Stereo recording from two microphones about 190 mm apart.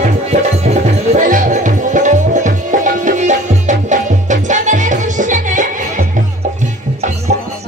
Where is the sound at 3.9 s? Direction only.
40° right (ahead or behind).